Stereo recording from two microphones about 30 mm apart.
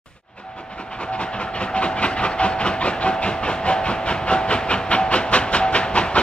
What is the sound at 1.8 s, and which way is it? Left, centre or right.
Train, left.